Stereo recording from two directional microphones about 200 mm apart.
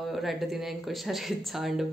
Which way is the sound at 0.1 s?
Centre (ahead or behind).